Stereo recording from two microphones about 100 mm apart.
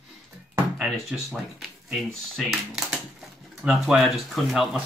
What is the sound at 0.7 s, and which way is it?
Speech, 5° right (ahead or behind).